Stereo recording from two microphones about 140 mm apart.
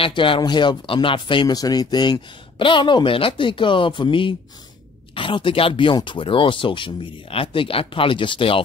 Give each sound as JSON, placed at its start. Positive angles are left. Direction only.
{"t": 0.0, "sound": "speech", "side_deg": 35}